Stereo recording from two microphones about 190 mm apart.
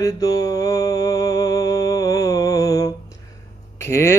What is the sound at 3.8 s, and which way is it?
Speech, 15° left (ahead or behind).